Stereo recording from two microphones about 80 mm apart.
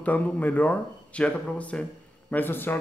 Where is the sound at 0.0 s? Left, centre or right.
Left.